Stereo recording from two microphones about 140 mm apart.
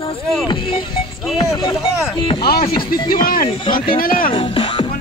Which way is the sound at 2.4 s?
90° left.